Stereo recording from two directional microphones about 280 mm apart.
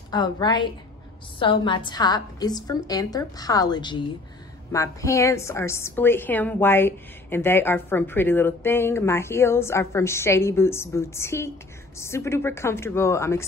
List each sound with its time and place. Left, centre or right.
0.1 s a woman's voice: centre